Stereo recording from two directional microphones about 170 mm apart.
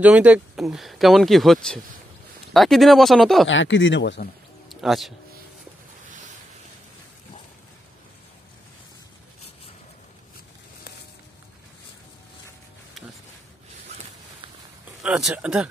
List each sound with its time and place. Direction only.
0.0 s speech: 10° right (ahead or behind)
3.4 s speech: 90° left
4.6 s music: centre (ahead or behind)
15.0 s speech: 5° right (ahead or behind)